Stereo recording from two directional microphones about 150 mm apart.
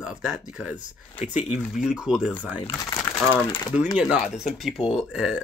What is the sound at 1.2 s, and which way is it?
Speech, 50° left (ahead or behind).